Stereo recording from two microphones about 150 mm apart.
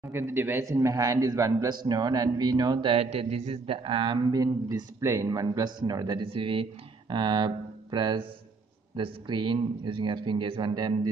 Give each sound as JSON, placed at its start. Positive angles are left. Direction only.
{"t": 0.1, "sound": "a man's voice", "side_deg": -15}